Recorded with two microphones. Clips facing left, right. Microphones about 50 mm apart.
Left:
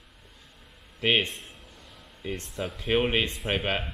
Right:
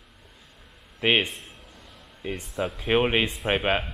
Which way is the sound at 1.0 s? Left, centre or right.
Centre.